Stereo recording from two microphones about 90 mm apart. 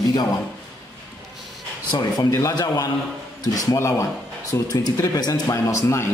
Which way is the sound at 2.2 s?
35° left (ahead or behind).